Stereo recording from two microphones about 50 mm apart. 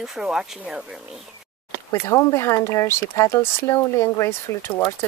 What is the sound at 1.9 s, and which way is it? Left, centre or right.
Speech, left.